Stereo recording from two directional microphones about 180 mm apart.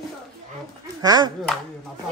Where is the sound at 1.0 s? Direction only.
20° right (ahead or behind).